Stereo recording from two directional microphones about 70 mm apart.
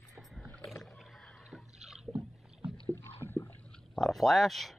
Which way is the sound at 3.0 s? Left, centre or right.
Left.